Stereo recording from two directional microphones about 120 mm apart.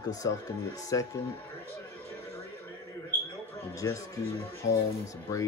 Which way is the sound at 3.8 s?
25° left (ahead or behind).